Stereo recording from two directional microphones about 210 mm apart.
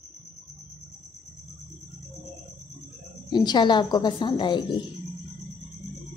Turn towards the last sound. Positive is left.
turn(degrees=20)  # may be behind; listen again after turning